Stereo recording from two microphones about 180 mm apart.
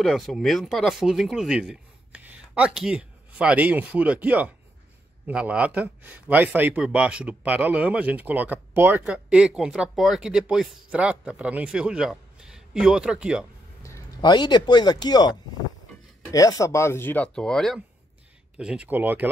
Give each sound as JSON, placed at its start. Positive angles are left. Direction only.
{"t": 0.0, "sound": "speech", "side_deg": 0}
{"t": 13.8, "sound": "a man's voice", "side_deg": 20}